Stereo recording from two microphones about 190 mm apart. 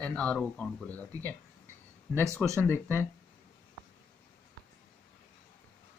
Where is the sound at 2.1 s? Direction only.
15° right (ahead or behind).